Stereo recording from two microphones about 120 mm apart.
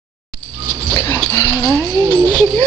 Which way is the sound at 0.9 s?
20° left (ahead or behind).